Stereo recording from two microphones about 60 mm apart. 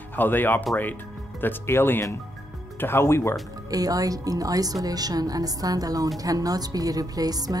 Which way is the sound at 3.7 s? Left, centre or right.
Right.